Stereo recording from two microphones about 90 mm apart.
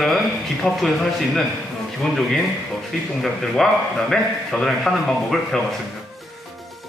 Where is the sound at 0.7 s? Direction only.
5° left (ahead or behind).